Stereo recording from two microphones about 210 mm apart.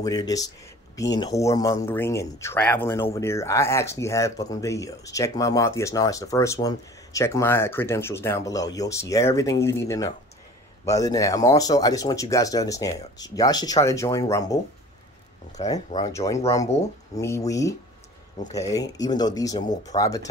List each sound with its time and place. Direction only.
0.0 s speech: 15° left (ahead or behind)